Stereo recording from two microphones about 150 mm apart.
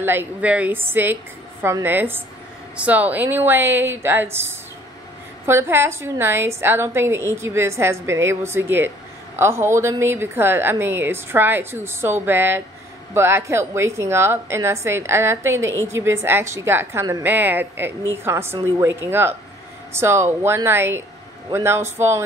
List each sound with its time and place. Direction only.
0.0 s a woman's voice: 15° right (ahead or behind)